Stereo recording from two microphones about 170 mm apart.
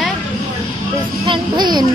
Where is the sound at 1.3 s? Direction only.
25° right (ahead or behind).